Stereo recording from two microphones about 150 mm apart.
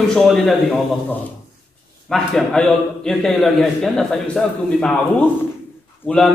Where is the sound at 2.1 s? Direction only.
5° left (ahead or behind).